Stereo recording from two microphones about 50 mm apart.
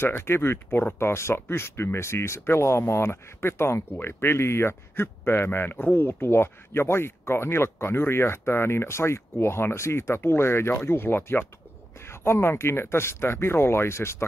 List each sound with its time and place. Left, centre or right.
0.0 s speech: left
12.0 s speech: left